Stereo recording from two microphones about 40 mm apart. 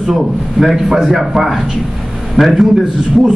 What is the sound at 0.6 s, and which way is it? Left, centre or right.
Speech, centre.